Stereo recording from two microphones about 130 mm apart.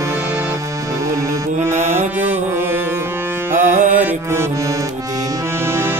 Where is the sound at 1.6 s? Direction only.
20° right (ahead or behind).